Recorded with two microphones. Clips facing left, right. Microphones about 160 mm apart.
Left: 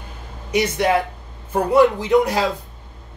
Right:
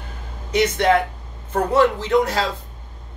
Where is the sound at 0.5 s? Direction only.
10° left (ahead or behind).